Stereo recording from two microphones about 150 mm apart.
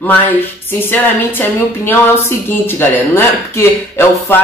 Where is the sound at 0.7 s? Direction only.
15° left (ahead or behind).